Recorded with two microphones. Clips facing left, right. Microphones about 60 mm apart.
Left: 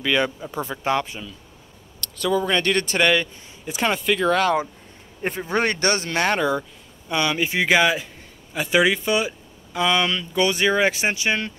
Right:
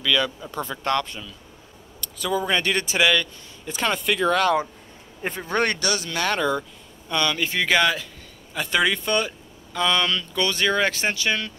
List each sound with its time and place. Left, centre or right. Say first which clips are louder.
0.0 s speech: left 1 dB; left
0.4 s speech: left 1 dB; centre
2.1 s speech: left 2 dB; centre
3.2 s speech: left 1 dB; centre
5.8 s speech: left 4 dB; left
6.2 s speech: left 1 dB; centre